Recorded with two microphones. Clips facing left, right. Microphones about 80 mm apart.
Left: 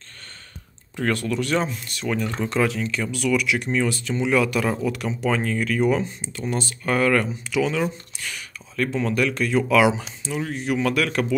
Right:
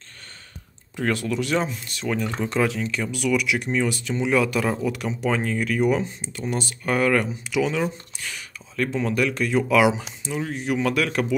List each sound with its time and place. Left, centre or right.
0.9 s speech: centre
1.9 s speech: right